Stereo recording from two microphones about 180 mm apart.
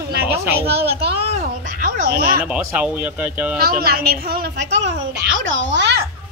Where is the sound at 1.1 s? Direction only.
35° right (ahead or behind); by 2.4 s 60° right (ahead or behind).